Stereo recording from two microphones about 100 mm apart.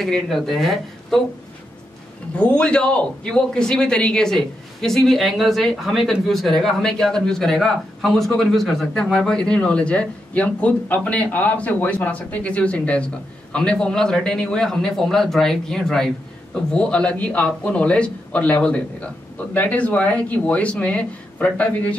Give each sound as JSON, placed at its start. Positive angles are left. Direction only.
{"t": 0.0, "sound": "speech", "side_deg": 5}
{"t": 2.3, "sound": "a man's voice", "side_deg": 10}